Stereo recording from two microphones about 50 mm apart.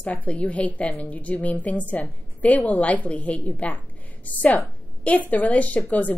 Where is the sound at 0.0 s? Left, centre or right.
Left.